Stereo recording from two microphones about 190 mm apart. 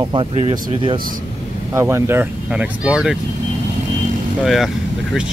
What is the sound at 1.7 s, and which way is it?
Speech, 15° right (ahead or behind).